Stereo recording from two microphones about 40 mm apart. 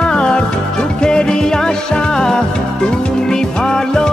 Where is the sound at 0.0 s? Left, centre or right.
Left.